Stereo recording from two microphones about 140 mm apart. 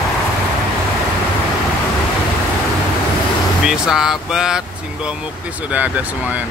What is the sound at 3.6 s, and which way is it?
Speech, 5° right (ahead or behind).